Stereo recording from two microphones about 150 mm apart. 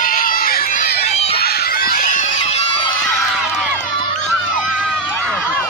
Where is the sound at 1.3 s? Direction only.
90° left; by 2.6 s 55° left (ahead or behind).